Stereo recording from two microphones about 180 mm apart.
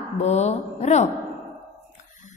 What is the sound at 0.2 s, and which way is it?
Speech, 40° left (ahead or behind).